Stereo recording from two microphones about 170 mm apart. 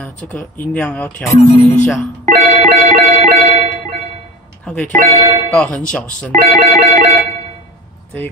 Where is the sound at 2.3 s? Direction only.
45° right (ahead or behind).